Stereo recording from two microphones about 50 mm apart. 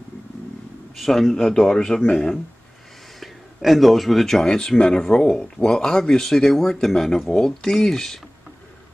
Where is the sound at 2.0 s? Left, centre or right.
Centre.